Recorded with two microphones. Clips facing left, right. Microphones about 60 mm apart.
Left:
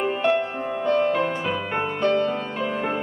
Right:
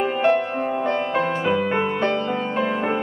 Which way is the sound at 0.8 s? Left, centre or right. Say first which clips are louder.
Left 5 dB; right.